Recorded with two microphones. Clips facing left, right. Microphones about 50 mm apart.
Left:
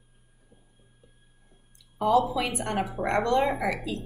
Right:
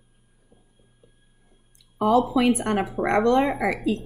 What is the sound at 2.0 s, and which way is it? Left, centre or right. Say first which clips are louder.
Speech: right 4 dB; right.